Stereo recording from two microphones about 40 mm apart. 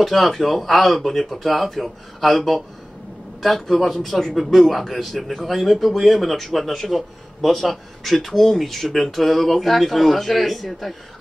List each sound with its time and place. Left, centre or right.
0.0 s a man's voice: centre